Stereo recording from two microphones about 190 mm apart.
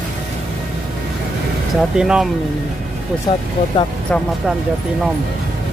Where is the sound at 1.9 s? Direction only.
5° right (ahead or behind).